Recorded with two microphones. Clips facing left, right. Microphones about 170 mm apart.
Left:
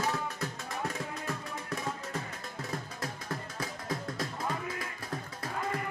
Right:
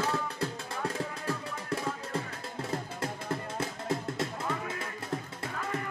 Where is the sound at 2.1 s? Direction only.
30° right (ahead or behind).